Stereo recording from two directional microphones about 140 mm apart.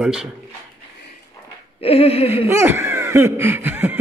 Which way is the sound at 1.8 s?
45° left (ahead or behind).